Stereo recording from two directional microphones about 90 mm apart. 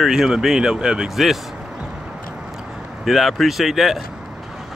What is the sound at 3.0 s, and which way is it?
Speech, centre (ahead or behind).